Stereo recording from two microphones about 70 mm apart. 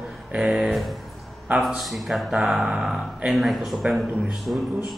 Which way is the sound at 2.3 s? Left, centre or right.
Centre.